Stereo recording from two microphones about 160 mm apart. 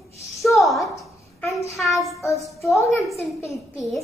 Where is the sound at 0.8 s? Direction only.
20° left (ahead or behind).